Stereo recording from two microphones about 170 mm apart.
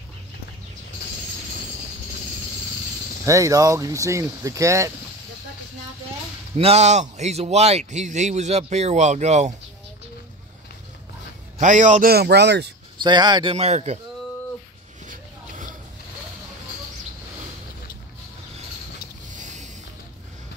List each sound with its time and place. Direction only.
3.3 s speech: 20° right (ahead or behind)
6.5 s a man's voice: 40° right (ahead or behind)
11.6 s a man's voice: 45° right (ahead or behind)
12.1 s speech: 70° right (ahead or behind)
12.9 s speech: 25° right (ahead or behind)
15.0 s a sound: 50° right (ahead or behind)
19.2 s a sound: 45° right (ahead or behind)